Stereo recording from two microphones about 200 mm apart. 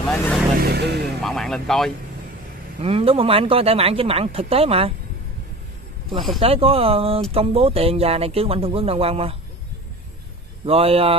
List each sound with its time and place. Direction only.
0.1 s speech: 5° left (ahead or behind)
0.6 s speech: 55° right (ahead or behind)
1.2 s speech: centre (ahead or behind)
2.8 s speech: 30° right (ahead or behind)
6.1 s speech: centre (ahead or behind)
6.4 s speech: 30° right (ahead or behind)
10.6 s speech: 30° right (ahead or behind)